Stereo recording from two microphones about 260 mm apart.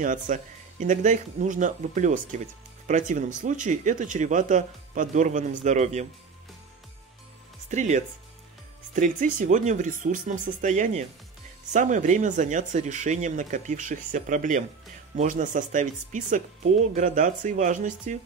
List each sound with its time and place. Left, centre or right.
0.0 s speech: right
7.7 s speech: right